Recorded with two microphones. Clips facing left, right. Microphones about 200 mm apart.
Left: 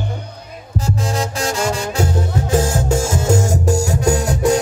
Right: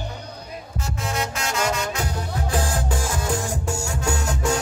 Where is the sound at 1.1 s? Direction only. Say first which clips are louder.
Left 2 dB; 30° left (ahead or behind).